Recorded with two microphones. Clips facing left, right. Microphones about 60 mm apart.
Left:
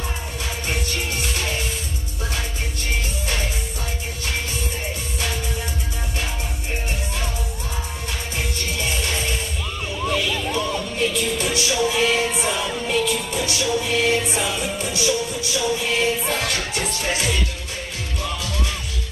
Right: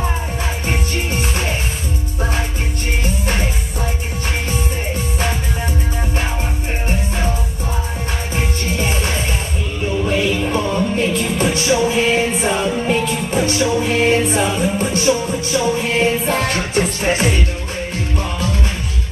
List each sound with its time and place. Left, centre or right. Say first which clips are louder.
0.7 s music: right 4 dB; right
8.4 s music: right 6 dB; right